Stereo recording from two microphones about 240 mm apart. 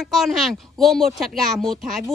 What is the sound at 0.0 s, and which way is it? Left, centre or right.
A woman's voice, centre.